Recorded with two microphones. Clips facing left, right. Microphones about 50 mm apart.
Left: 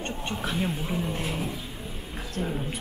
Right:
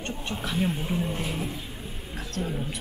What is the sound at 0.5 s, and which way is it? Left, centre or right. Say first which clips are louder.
Speech: right 2 dB; centre.